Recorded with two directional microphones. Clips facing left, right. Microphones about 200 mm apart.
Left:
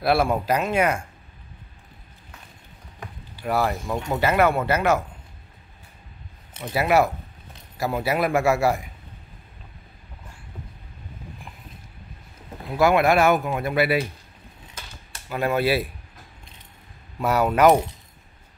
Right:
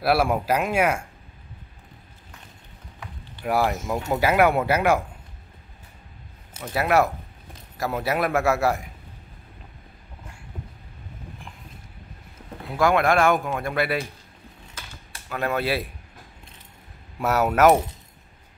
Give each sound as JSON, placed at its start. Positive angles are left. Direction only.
{"t": 0.0, "sound": "speech", "side_deg": -5}
{"t": 3.4, "sound": "speech", "side_deg": -5}
{"t": 6.7, "sound": "a man's voice", "side_deg": 0}
{"t": 12.7, "sound": "speech", "side_deg": 5}
{"t": 15.2, "sound": "a man's voice", "side_deg": 5}
{"t": 17.2, "sound": "a man's voice", "side_deg": -5}